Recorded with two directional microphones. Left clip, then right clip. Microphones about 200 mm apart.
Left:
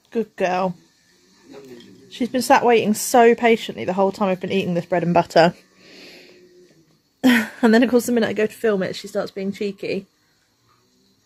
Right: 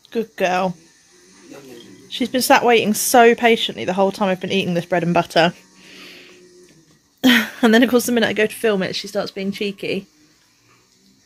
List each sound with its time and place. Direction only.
0.1 s speech: 10° left (ahead or behind)
2.0 s speech: 5° left (ahead or behind)
5.1 s a sound: 20° left (ahead or behind)
7.2 s speech: 5° left (ahead or behind)